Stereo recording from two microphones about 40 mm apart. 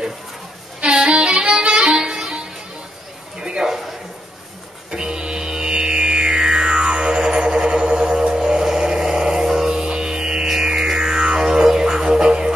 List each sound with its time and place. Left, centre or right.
0.7 s music: right
4.9 s music: centre
7.9 s a sound: centre
10.6 s music: centre